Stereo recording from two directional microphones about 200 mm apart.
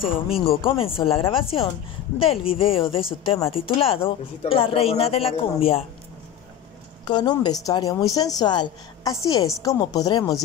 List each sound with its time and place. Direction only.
0.0 s speech: 30° left (ahead or behind)
7.1 s a woman's voice: 20° left (ahead or behind)